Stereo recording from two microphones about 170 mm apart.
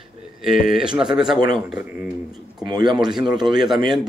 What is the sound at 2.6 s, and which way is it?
Mantra, 25° right (ahead or behind).